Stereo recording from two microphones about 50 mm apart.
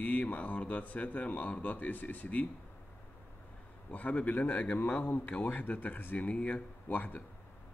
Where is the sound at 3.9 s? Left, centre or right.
Left.